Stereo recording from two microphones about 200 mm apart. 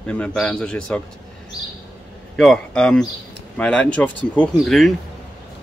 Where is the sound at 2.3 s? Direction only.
5° left (ahead or behind).